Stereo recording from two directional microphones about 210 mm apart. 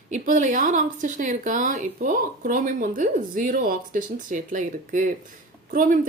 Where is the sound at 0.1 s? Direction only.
35° right (ahead or behind).